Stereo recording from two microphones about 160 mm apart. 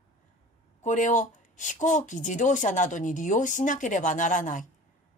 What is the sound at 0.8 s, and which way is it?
Speech, 50° left (ahead or behind).